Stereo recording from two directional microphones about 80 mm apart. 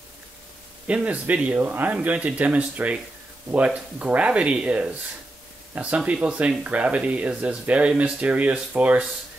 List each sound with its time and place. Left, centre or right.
0.8 s speech: centre